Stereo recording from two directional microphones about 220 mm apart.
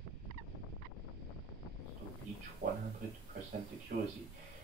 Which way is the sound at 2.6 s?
30° right (ahead or behind).